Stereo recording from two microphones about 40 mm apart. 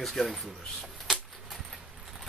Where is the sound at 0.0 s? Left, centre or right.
Centre.